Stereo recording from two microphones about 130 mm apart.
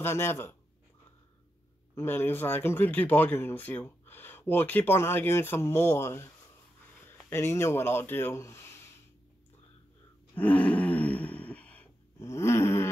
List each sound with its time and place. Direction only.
0.0 s speech: 20° left (ahead or behind)
2.0 s speech: 15° left (ahead or behind)
10.3 s a sound: 10° left (ahead or behind)